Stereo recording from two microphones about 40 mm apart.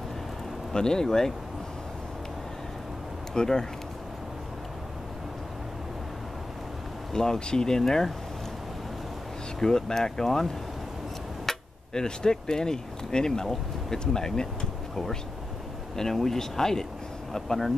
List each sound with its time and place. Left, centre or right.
0.7 s speech: centre
3.3 s speech: centre
7.1 s speech: centre
9.6 s speech: centre